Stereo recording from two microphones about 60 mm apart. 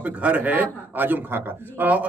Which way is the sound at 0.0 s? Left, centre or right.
Right.